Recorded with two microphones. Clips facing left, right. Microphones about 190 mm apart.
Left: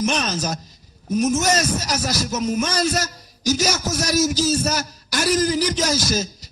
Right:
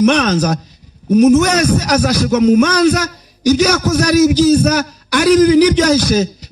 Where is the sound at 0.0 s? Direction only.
65° right (ahead or behind).